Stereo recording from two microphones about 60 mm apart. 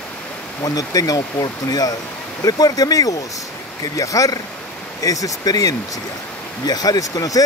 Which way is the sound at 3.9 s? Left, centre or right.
Left.